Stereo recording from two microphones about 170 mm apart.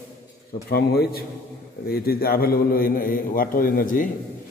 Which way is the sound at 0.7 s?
65° left (ahead or behind).